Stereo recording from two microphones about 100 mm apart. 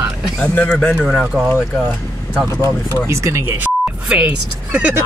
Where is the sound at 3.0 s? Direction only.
30° right (ahead or behind).